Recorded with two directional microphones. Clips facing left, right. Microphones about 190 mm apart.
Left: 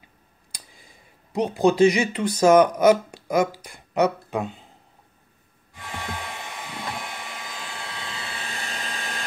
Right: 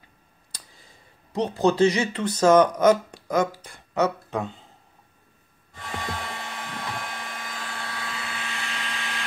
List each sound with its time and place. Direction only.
0.5 s speech: 15° left (ahead or behind)
5.8 s hair dryer: 10° left (ahead or behind); by 9.2 s 40° left (ahead or behind)